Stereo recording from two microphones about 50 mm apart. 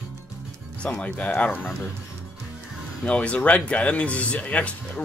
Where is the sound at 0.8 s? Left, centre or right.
Left.